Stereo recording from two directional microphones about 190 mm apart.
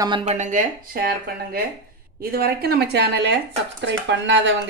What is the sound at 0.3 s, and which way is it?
Speech, 40° right (ahead or behind).